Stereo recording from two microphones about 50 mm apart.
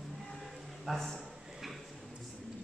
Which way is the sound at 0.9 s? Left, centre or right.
Centre.